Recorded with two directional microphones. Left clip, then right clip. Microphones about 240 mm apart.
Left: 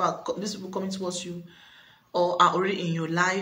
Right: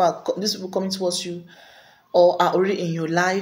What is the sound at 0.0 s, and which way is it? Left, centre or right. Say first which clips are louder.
Speech: right 7 dB; centre.